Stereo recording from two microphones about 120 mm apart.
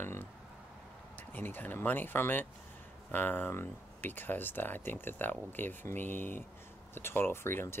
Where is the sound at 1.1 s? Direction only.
15° left (ahead or behind).